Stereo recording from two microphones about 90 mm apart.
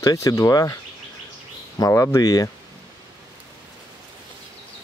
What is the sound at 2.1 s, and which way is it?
Speech, 45° left (ahead or behind).